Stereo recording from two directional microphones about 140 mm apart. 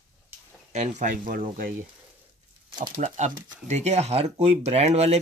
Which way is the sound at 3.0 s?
55° right (ahead or behind).